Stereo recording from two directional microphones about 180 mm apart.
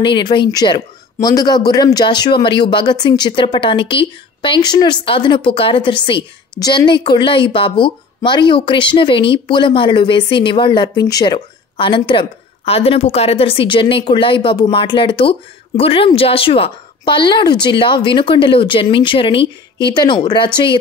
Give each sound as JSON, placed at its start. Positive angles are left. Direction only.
{"t": 0.0, "sound": "a woman's voice", "side_deg": 25}